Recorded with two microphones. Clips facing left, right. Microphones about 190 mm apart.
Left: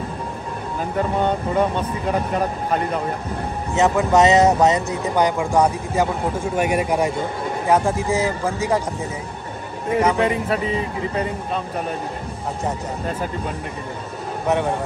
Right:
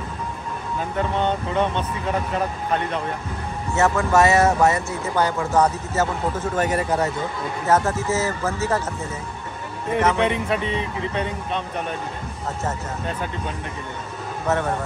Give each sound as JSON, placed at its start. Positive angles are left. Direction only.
{"t": 1.1, "sound": "speech", "side_deg": 10}
{"t": 3.7, "sound": "speech", "side_deg": 15}
{"t": 9.9, "sound": "speech", "side_deg": 5}